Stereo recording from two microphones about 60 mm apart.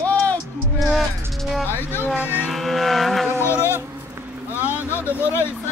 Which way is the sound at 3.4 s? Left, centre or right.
Left.